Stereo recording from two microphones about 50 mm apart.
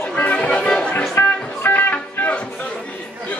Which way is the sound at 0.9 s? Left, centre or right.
Left.